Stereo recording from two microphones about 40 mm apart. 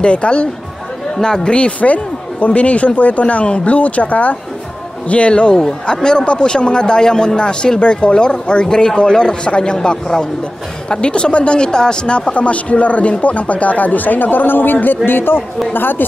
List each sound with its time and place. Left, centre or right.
0.0 s speech: left
1.1 s speech: centre
2.4 s a man's voice: left